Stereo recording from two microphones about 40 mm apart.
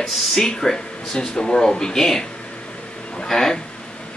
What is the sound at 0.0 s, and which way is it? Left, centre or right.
Speech, centre.